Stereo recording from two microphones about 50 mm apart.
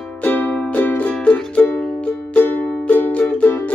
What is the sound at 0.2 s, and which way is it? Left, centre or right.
Music, left.